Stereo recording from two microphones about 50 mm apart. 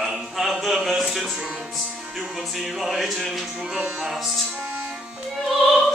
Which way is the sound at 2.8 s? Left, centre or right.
Centre.